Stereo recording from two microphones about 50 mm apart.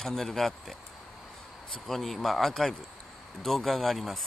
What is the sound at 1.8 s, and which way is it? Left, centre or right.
Speech, centre.